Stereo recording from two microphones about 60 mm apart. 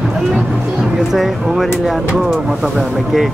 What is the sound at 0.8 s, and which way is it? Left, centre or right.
Speech, centre.